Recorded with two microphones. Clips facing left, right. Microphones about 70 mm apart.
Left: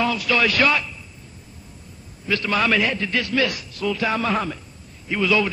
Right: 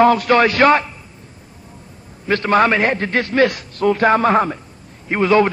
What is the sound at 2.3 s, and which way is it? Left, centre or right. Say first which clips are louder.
A man's voice: right 7 dB; right.